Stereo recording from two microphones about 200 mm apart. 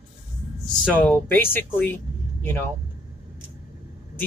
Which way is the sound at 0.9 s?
10° left (ahead or behind).